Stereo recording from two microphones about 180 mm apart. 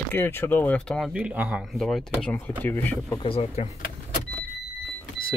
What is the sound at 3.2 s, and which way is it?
Speech, 30° left (ahead or behind).